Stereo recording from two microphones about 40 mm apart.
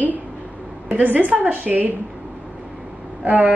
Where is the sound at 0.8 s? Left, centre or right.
Right.